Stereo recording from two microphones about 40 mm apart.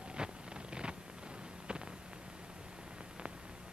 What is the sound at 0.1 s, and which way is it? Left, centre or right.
Vehicle, right.